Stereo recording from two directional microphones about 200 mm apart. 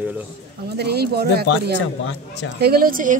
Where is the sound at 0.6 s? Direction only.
55° right (ahead or behind).